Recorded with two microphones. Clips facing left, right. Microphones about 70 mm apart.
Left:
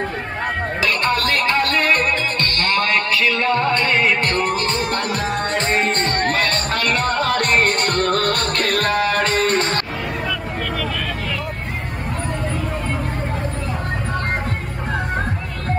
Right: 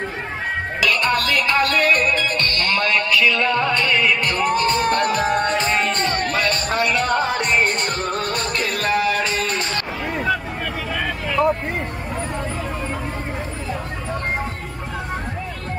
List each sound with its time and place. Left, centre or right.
0.8 s music: left